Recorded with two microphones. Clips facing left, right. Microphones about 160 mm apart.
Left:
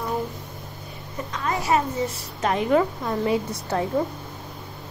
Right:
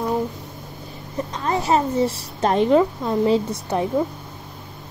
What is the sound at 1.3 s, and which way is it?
A woman's voice, 30° right (ahead or behind).